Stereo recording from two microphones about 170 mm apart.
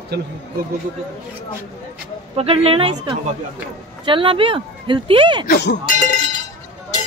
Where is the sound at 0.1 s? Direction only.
70° right (ahead or behind).